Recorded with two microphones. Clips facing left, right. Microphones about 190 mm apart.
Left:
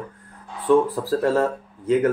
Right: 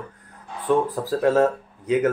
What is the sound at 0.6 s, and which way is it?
Speech, 20° right (ahead or behind).